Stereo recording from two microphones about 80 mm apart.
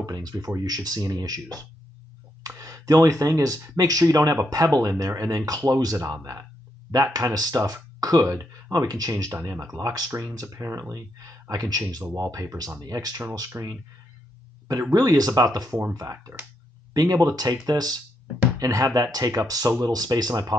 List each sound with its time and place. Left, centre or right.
0.0 s speech: right
9.1 s speech: right
9.8 s speech: right